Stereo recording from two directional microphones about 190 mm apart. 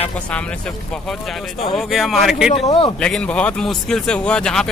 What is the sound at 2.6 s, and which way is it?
Speech, 30° left (ahead or behind).